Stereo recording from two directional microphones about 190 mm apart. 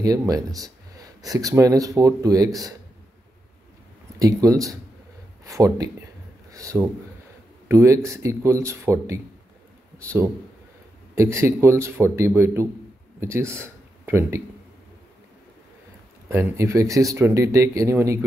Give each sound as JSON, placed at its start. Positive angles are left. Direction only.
{"t": 0.0, "sound": "speech", "side_deg": -20}
{"t": 4.2, "sound": "speech", "side_deg": -20}
{"t": 6.5, "sound": "a sound", "side_deg": -15}
{"t": 7.6, "sound": "speech", "side_deg": -15}
{"t": 16.3, "sound": "speech", "side_deg": -15}